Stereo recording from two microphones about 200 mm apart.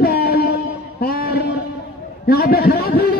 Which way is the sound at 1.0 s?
50° left (ahead or behind).